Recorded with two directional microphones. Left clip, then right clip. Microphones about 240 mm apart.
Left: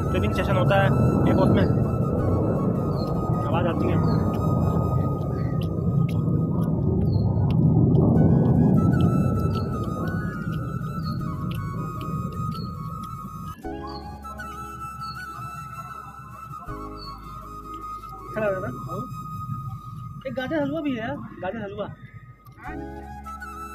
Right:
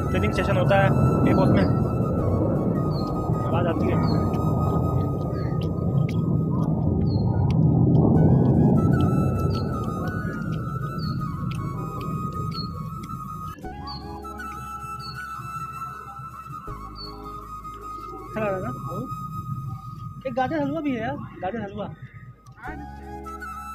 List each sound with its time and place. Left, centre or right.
0.1 s speech: centre
1.2 s music: centre
6.6 s rumble: centre
10.5 s music: centre
18.3 s music: centre
20.2 s speech: centre